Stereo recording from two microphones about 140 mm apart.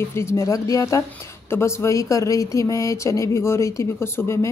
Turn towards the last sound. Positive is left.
turn(degrees=20)  # may be behind; listen again after turning